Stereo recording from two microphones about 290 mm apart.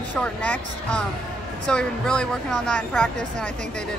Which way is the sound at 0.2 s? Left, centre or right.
Centre.